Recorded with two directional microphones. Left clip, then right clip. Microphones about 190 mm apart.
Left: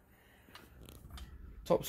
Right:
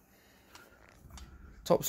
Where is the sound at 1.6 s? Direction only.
35° right (ahead or behind).